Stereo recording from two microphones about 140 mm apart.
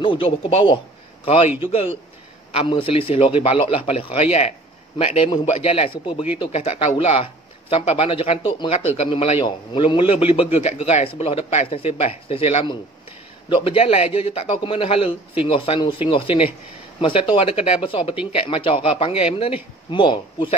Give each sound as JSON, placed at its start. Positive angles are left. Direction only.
{"t": 0.0, "sound": "a man's voice", "side_deg": 40}
{"t": 6.5, "sound": "a man's voice", "side_deg": 50}